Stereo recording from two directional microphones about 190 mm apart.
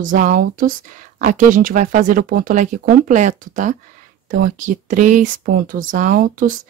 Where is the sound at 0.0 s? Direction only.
45° right (ahead or behind).